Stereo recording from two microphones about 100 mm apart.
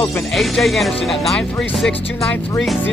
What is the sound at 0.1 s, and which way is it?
Speech, centre (ahead or behind).